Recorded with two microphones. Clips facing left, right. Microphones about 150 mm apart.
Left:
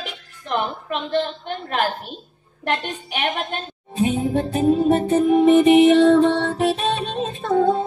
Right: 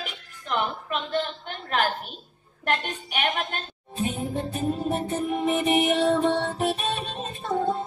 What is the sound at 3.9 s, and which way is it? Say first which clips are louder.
Music: left 8 dB; 90° left.